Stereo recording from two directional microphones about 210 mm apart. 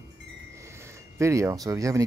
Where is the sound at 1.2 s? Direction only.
15° right (ahead or behind).